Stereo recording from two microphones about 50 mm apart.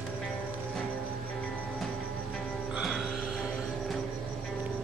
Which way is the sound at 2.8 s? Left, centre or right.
Centre.